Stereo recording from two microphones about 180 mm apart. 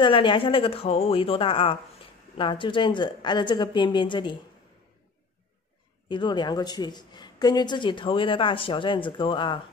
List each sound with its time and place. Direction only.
0.0 s a woman's voice: 25° left (ahead or behind)
6.0 s a woman's voice: 25° left (ahead or behind)